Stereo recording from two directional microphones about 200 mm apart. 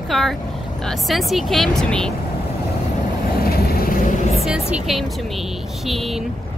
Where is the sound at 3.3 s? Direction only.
50° left (ahead or behind).